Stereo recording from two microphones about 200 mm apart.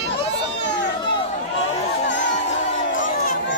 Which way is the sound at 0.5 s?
60° left (ahead or behind).